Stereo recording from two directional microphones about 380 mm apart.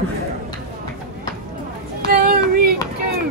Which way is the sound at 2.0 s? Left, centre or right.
Right.